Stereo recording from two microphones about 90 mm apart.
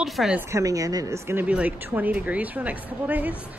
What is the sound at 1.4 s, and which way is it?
A woman's voice, 15° right (ahead or behind).